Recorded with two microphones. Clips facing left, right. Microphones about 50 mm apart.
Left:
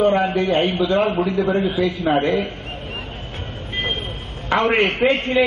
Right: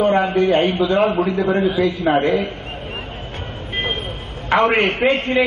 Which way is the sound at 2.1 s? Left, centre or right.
Centre.